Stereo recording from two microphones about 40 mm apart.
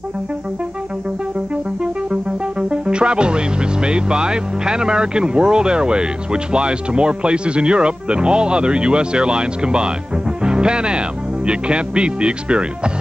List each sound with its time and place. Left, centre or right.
2.7 s speech: right